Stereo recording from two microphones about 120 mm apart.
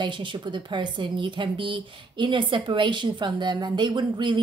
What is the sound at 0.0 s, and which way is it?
A woman's voice, 45° right (ahead or behind).